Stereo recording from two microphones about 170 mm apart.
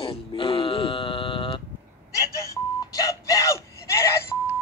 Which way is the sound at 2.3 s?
20° left (ahead or behind).